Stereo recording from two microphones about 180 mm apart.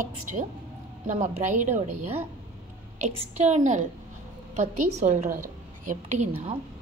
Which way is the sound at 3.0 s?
35° right (ahead or behind).